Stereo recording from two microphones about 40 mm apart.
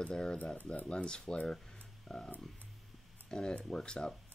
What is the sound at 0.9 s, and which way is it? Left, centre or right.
Speech, left.